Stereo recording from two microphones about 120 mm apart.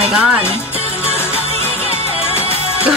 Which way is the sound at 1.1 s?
20° left (ahead or behind).